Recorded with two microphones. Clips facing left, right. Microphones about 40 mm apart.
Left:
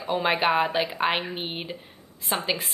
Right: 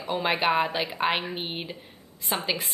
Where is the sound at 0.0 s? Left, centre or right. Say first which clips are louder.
Left 2 dB; centre.